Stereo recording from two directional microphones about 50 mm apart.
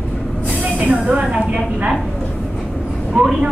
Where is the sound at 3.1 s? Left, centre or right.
Centre.